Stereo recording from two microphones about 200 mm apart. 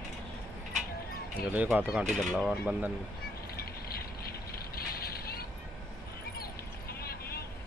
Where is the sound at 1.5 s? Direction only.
10° right (ahead or behind).